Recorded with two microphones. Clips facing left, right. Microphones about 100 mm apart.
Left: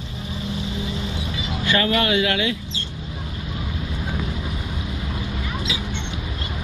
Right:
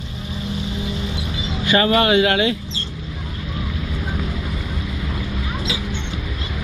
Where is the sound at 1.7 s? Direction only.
25° right (ahead or behind).